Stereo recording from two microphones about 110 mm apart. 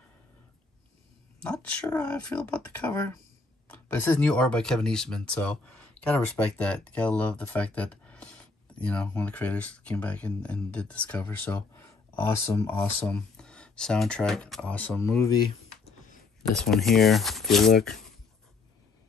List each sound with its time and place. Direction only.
1.4 s speech: 10° left (ahead or behind)
13.0 s speech: 10° left (ahead or behind)
15.1 s speech: 35° left (ahead or behind)
16.4 s speech: 5° left (ahead or behind)